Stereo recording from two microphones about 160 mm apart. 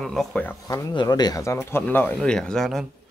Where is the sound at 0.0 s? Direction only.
5° left (ahead or behind).